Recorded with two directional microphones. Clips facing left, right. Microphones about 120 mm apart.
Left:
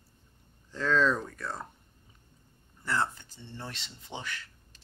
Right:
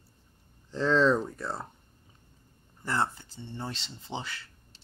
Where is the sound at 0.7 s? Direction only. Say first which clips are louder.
Right 3 dB; 30° right (ahead or behind).